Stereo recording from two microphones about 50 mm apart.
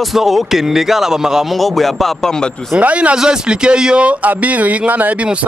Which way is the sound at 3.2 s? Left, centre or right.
Centre.